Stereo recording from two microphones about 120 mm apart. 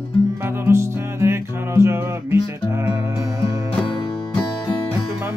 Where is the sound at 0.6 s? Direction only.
25° right (ahead or behind).